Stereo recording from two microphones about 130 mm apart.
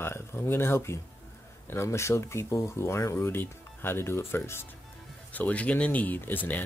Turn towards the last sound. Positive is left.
turn(degrees=15)  # may be behind; listen again after turning